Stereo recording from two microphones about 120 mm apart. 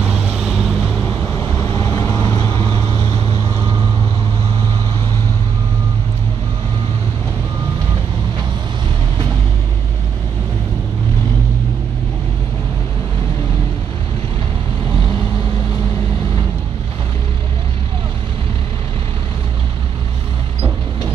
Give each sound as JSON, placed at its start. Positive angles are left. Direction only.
{"t": 0.0, "sound": "vehicle", "side_deg": -10}
{"t": 1.7, "sound": "vehicle", "side_deg": 30}